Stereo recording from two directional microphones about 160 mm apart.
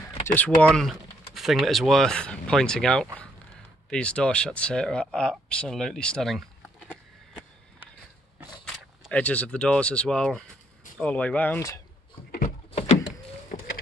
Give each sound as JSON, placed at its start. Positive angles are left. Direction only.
{"t": 0.3, "sound": "speech", "side_deg": 10}
{"t": 8.6, "sound": "speech", "side_deg": 5}
{"t": 12.3, "sound": "a sound", "side_deg": 60}